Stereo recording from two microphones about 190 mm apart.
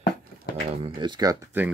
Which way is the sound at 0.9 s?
20° right (ahead or behind).